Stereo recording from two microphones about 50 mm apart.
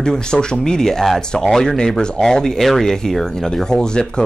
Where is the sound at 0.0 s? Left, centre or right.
Centre.